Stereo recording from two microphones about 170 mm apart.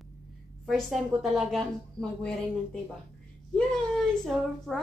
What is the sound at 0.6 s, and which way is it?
A woman's voice, centre (ahead or behind).